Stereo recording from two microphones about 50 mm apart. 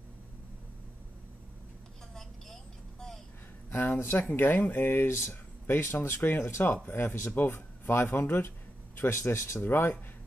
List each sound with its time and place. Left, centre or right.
2.1 s vehicle: centre
3.7 s speech: left
6.0 s speech: left
7.3 s speech: left
9.6 s speech: left